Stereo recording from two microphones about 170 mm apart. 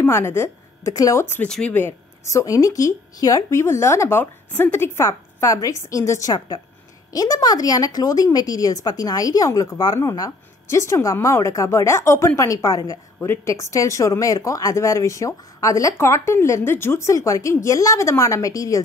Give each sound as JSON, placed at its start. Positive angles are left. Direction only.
{"t": 0.0, "sound": "speech", "side_deg": 15}